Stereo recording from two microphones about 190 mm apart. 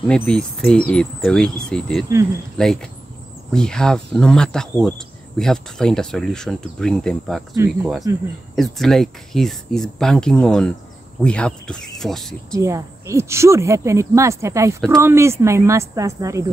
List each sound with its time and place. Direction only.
0.1 s speech: 5° left (ahead or behind)
8.1 s speech: 15° right (ahead or behind)
8.5 s speech: centre (ahead or behind)
12.5 s speech: 15° right (ahead or behind)